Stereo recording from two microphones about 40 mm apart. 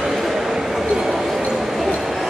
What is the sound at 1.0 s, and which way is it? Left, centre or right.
Basketball bounce, centre.